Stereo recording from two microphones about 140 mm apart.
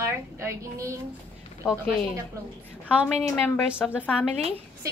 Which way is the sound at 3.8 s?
5° left (ahead or behind).